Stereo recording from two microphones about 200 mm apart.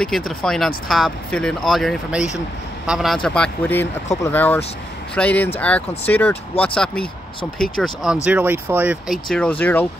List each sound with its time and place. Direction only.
0.0 s speech: 5° left (ahead or behind)